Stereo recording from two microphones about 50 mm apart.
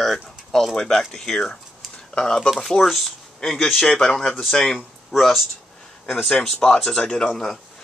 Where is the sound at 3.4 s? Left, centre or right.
Centre.